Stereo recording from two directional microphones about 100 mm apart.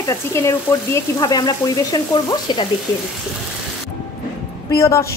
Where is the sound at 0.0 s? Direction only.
30° left (ahead or behind).